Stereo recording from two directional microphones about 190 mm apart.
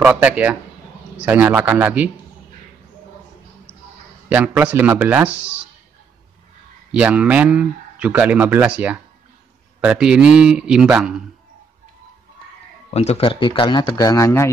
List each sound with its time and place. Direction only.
0.0 s speech: 5° right (ahead or behind)
4.3 s speech: 10° right (ahead or behind)
6.9 s speech: 5° right (ahead or behind)
12.9 s speech: 35° left (ahead or behind); by 14.5 s 15° left (ahead or behind)